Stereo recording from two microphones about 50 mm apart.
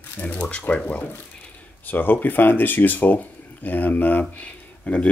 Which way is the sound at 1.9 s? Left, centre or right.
Left.